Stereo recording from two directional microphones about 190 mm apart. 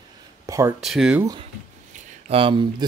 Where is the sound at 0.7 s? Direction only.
Centre (ahead or behind).